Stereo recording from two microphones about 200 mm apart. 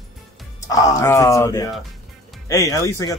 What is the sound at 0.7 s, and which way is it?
Speech, 15° left (ahead or behind).